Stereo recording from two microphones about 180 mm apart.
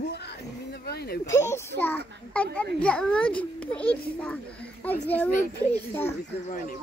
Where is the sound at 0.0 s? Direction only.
65° left (ahead or behind).